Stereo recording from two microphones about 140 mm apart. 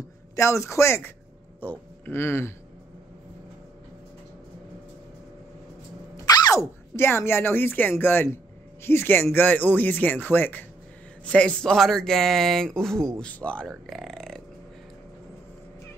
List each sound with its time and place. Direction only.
0.4 s a man's voice: 20° left (ahead or behind)
6.2 s speech: 30° left (ahead or behind); by 14.4 s 5° left (ahead or behind)